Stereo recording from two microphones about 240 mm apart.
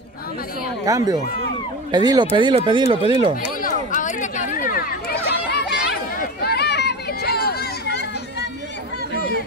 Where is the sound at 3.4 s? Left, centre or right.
Left.